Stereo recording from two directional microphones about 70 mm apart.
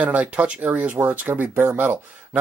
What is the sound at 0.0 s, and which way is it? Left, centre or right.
Speech, right.